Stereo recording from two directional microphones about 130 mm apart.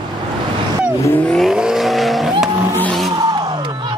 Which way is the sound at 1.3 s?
5° right (ahead or behind).